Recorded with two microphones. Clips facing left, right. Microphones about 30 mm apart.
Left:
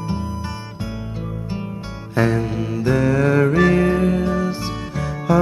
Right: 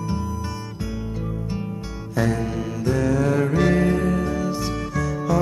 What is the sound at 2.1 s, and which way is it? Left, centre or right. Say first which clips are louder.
Music: left 4 dB; left.